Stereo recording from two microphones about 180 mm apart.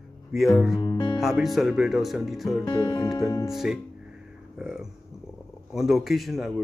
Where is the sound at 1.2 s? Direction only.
Centre (ahead or behind).